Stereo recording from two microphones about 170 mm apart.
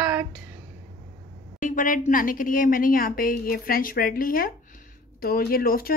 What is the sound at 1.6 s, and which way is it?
A woman's voice, 50° left (ahead or behind).